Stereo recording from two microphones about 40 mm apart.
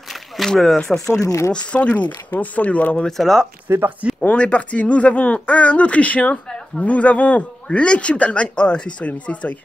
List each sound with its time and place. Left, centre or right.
0.5 s speech: centre
1.8 s speech: left
3.1 s speech: centre
3.6 s speech: right
4.3 s speech: left